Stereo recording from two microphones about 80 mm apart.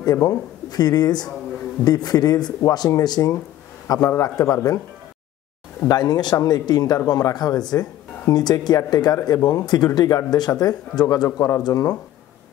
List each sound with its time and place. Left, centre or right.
0.0 s speech: left
5.9 s speech: left
11.2 s speech: left